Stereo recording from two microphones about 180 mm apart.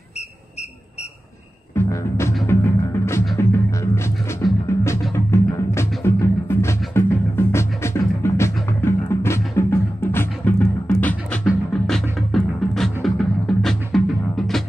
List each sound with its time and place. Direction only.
1.8 s music: 15° left (ahead or behind)